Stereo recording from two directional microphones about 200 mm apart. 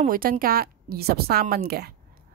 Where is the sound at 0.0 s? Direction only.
45° right (ahead or behind).